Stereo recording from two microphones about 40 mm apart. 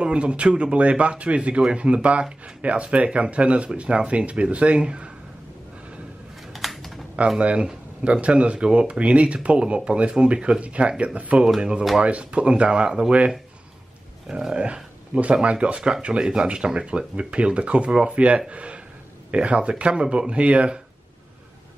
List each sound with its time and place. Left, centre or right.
0.0 s speech: right
6.4 s a sound: centre
7.3 s speech: right
14.5 s speech: right